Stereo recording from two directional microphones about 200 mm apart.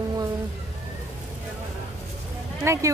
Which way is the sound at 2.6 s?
15° right (ahead or behind).